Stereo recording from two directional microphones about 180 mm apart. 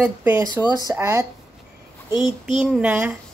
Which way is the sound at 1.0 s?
20° right (ahead or behind).